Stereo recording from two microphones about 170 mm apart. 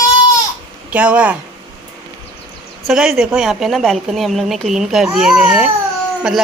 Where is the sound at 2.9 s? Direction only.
5° right (ahead or behind).